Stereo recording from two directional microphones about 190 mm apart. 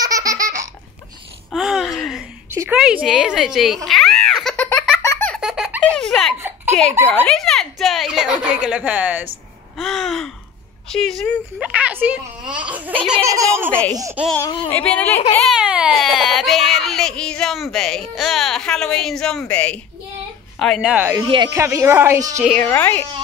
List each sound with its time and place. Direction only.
0.0 s laughter: 20° right (ahead or behind)
1.5 s a sound: centre (ahead or behind)
5.0 s baby laughter: 15° left (ahead or behind)
5.3 s baby laughter: 5° right (ahead or behind)
7.1 s a woman's voice: 5° left (ahead or behind); by 13.7 s 15° right (ahead or behind)
13.7 s a woman's voice: 5° left (ahead or behind); by 21.2 s 10° right (ahead or behind)
21.2 s speech: 25° right (ahead or behind)
21.5 s a woman's voice: 15° right (ahead or behind)
22.4 s a woman's voice: 5° left (ahead or behind)